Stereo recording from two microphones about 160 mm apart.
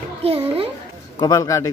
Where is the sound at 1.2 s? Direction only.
20° left (ahead or behind).